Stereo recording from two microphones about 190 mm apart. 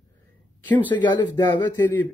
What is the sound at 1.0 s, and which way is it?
Speech, 25° left (ahead or behind).